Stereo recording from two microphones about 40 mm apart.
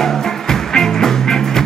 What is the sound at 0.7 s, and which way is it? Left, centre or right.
Music, centre.